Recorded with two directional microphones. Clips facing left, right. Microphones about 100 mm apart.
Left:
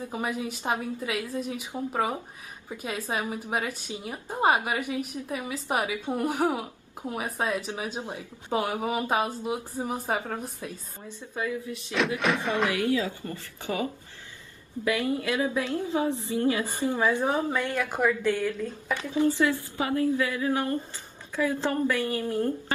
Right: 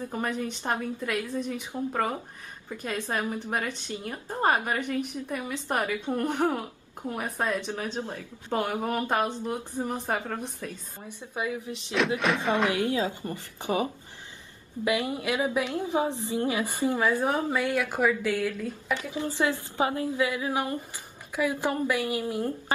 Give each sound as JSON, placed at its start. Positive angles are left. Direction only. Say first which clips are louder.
{"t": 0.0, "sound": "a woman's voice", "louder": "even", "side_deg": 5}
{"t": 8.5, "sound": "speech", "louder": "even", "side_deg": 5}
{"t": 11.1, "sound": "a woman's voice", "louder": "even", "side_deg": -15}
{"t": 12.2, "sound": "speech", "louder": "right 1 dB", "side_deg": 0}
{"t": 12.6, "sound": "a woman's voice", "louder": "even", "side_deg": -25}
{"t": 16.9, "sound": "a woman's voice", "louder": "left 1 dB", "side_deg": 20}
{"t": 17.5, "sound": "a woman's voice", "louder": "right 1 dB", "side_deg": -10}